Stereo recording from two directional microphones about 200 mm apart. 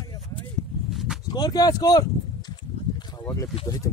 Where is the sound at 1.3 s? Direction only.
20° left (ahead or behind).